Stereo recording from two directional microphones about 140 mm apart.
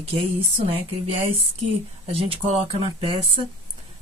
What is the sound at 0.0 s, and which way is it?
Speech, 40° right (ahead or behind).